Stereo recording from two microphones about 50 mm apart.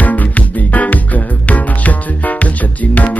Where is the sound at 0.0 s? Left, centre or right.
Left.